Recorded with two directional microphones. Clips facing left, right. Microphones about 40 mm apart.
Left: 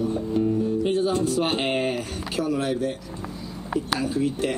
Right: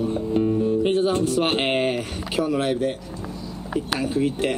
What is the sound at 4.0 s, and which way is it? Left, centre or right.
Speech, right.